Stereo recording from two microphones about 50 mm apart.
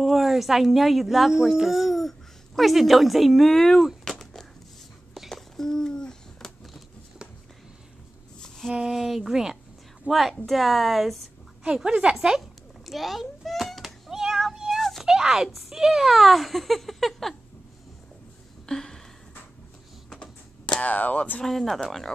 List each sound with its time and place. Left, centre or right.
0.0 s speech: centre
4.0 s a sound: centre
8.7 s speech: centre
11.6 s a woman's voice: centre
12.4 s a sound: centre
15.0 s speech: centre
18.7 s a sound: centre
20.1 s computer keyboard: centre
20.9 s speech: left
21.4 s speech: centre